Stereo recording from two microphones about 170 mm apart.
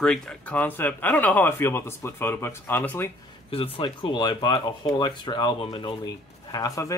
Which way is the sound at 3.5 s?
35° left (ahead or behind).